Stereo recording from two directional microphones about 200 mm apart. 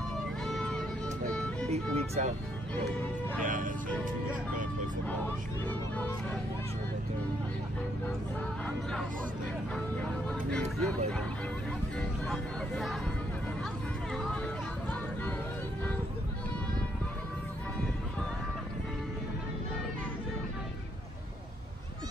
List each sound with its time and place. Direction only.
0.5 s music: 5° left (ahead or behind)
1.7 s speech: 35° right (ahead or behind)
3.4 s speech: 40° right (ahead or behind)
5.7 s speech: 10° left (ahead or behind)
10.5 s speech: 5° left (ahead or behind)
12.3 s speech: centre (ahead or behind)
14.1 s speech: 5° left (ahead or behind)